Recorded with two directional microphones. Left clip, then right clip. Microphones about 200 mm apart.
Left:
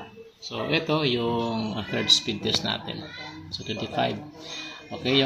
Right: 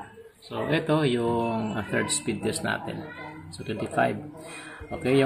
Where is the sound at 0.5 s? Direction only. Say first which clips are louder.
Even; 15° right (ahead or behind).